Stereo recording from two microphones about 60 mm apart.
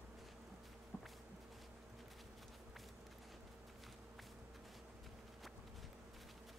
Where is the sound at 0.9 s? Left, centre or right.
Left.